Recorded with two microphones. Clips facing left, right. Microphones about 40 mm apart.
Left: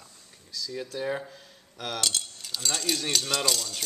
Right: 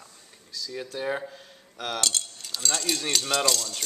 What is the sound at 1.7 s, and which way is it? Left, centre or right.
Speech, centre.